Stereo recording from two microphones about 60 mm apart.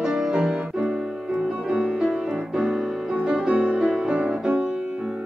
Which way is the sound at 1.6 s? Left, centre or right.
Centre.